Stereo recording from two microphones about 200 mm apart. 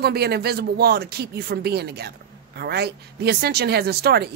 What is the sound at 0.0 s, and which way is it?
A woman's voice, 50° right (ahead or behind).